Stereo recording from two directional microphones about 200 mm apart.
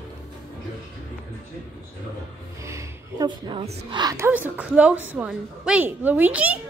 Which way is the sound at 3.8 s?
25° right (ahead or behind).